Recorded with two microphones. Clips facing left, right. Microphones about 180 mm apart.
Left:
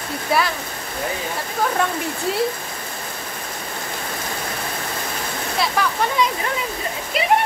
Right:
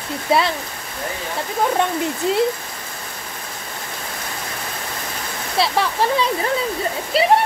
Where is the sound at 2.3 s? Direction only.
20° right (ahead or behind).